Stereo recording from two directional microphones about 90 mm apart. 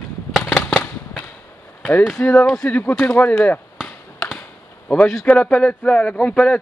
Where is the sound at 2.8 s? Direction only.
20° left (ahead or behind).